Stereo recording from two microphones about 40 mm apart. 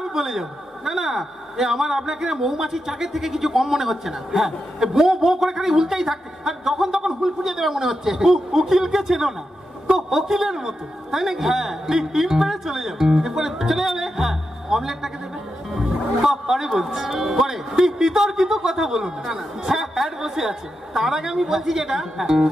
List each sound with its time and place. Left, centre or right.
0.1 s a man's voice: centre